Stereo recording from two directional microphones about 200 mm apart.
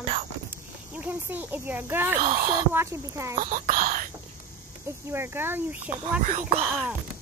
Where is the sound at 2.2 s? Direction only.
45° right (ahead or behind).